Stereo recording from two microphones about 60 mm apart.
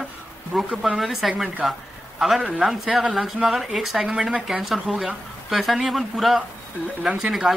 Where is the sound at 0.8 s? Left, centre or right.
Centre.